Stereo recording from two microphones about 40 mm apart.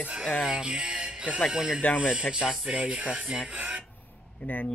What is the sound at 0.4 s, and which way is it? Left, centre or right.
Music, right.